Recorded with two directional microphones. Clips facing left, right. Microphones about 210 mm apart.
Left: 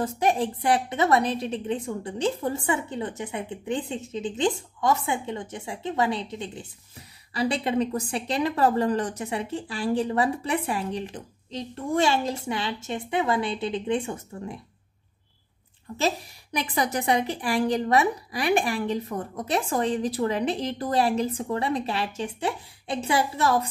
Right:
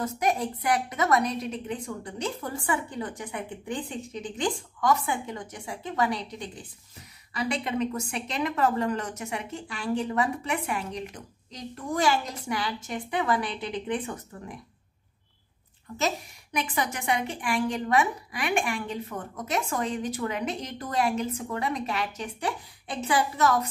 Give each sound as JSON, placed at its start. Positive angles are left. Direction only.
{"t": 0.0, "sound": "a woman's voice", "side_deg": 30}
{"t": 15.9, "sound": "a woman's voice", "side_deg": 30}